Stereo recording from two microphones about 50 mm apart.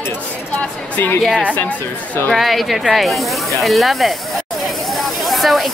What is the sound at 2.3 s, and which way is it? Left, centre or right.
Speech, centre.